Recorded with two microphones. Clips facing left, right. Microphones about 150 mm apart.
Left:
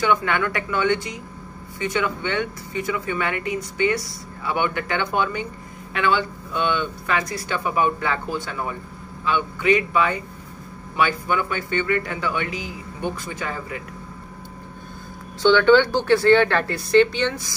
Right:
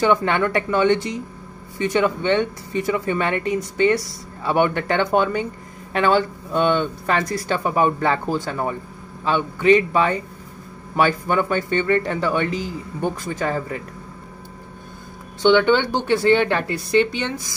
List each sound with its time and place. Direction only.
0.0 s speech: 30° right (ahead or behind)
15.4 s speech: 20° right (ahead or behind)